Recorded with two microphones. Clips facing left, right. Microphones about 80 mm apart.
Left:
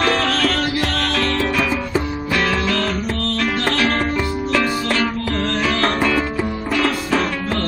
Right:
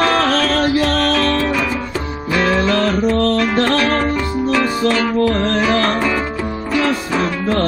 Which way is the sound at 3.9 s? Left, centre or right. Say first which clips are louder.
Right 3 dB; centre.